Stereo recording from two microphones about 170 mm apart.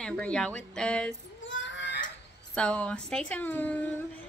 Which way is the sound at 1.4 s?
90° left.